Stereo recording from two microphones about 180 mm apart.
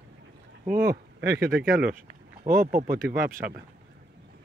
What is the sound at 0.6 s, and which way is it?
Speech, 55° right (ahead or behind).